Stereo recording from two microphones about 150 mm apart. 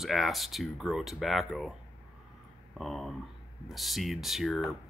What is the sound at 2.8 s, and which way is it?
Speech, centre (ahead or behind).